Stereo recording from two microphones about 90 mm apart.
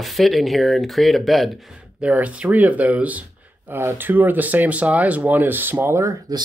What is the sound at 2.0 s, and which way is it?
Speech, 15° right (ahead or behind).